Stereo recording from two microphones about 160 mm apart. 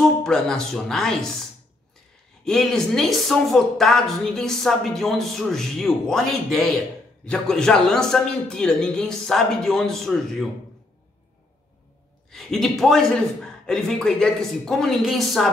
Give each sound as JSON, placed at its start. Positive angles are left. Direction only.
{"t": 0.0, "sound": "speech", "side_deg": 5}
{"t": 2.4, "sound": "a woman's voice", "side_deg": 0}
{"t": 12.3, "sound": "a woman's voice", "side_deg": 0}